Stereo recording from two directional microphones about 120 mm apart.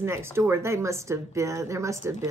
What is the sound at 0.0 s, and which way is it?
Speech, 20° right (ahead or behind).